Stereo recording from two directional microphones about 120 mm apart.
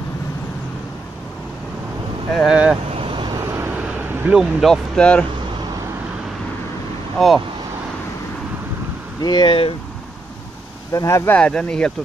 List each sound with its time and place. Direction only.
2.3 s speech: 5° right (ahead or behind)
3.1 s vehicle: 40° right (ahead or behind)
3.7 s vehicle: 10° right (ahead or behind)
4.9 s speech: 10° left (ahead or behind)
7.2 s speech: centre (ahead or behind)
9.2 s speech: 40° left (ahead or behind)
10.9 s speech: 25° left (ahead or behind)
11.3 s speech: 10° left (ahead or behind)